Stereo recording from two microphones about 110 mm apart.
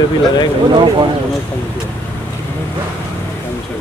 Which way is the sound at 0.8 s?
45° right (ahead or behind).